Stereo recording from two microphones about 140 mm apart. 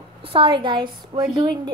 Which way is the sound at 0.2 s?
40° right (ahead or behind).